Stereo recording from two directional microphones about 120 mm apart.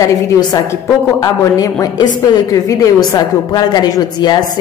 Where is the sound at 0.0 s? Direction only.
35° left (ahead or behind).